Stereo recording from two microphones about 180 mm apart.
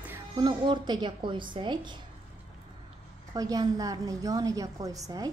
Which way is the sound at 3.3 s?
20° right (ahead or behind).